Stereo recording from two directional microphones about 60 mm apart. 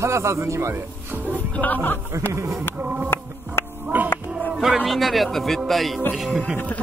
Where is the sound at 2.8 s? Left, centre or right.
Right.